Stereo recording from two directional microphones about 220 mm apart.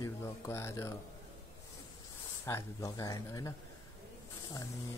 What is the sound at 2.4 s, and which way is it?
Speech, 15° left (ahead or behind).